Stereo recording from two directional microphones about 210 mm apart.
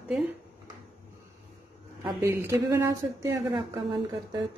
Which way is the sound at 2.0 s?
15° right (ahead or behind).